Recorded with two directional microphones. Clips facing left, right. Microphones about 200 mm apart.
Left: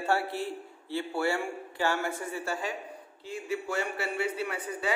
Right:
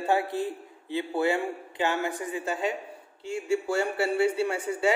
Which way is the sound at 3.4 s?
30° right (ahead or behind).